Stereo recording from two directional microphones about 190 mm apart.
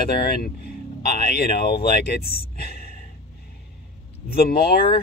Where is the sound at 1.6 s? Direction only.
55° left (ahead or behind).